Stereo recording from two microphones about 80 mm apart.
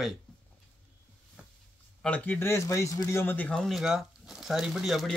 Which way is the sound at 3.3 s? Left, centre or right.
Centre.